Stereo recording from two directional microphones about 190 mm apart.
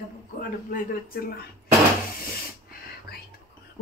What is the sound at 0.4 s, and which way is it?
Speech, 50° left (ahead or behind).